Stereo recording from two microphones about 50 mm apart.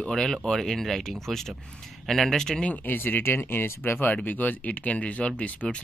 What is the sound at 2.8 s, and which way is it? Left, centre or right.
Speech, left.